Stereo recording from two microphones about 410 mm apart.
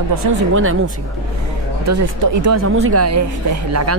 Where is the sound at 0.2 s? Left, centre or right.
Right.